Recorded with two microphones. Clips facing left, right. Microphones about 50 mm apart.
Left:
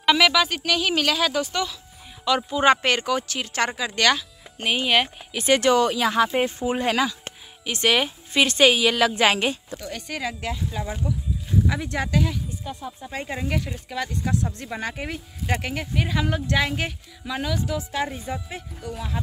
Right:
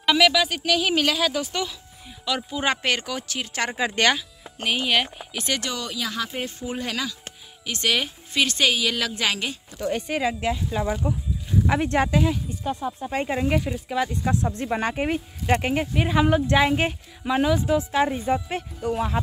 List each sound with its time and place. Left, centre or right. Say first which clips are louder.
0.0 s speech: left 1 dB; centre
2.2 s speech: left 6 dB; centre
3.7 s speech: right 4 dB; right
4.6 s a woman's voice: left 2 dB; centre
5.5 s a woman's voice: left 11 dB; left
9.2 s speech: left 6 dB; left
9.8 s speech: right 6 dB; right
11.6 s speech: right 5 dB; right
12.1 s speech: right 2 dB; centre
12.6 s speech: right 6 dB; right
13.3 s speech: right 4 dB; centre
18.3 s speech: right 7 dB; right